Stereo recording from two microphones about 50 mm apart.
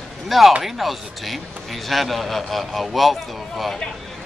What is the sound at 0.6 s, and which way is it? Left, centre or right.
A man's voice, centre.